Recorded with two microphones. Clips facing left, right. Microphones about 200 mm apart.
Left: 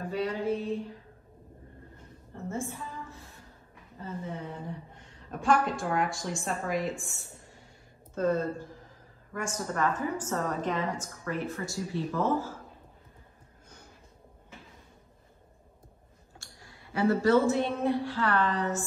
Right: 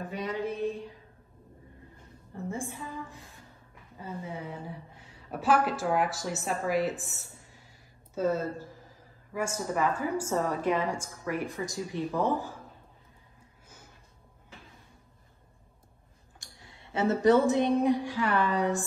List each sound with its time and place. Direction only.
0.0 s mantra: 20° right (ahead or behind)
2.5 s a sound: 15° right (ahead or behind)
4.0 s a woman's voice: 10° right (ahead or behind)
16.3 s speech: 20° right (ahead or behind)